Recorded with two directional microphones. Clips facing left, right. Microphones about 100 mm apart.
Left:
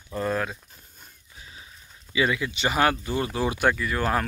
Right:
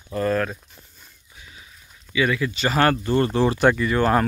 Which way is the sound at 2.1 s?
25° left (ahead or behind).